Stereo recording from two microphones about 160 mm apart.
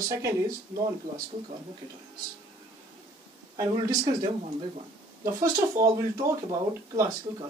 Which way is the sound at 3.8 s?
30° right (ahead or behind).